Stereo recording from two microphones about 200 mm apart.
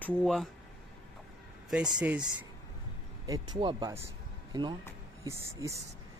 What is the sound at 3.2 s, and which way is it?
Speech, 20° right (ahead or behind).